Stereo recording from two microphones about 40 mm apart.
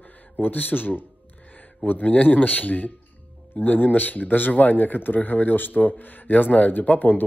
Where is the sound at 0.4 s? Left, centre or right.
Left.